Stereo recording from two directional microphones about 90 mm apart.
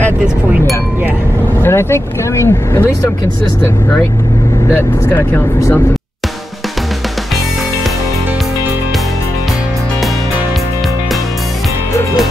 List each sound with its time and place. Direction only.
1.6 s speech: 30° left (ahead or behind)